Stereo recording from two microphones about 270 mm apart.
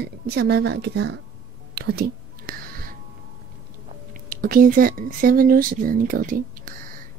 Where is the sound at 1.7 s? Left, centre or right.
Right.